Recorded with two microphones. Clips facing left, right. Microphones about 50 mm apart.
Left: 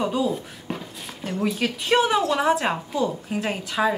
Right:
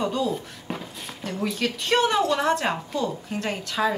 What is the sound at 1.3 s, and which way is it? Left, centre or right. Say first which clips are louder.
A woman's voice: left 2 dB; centre.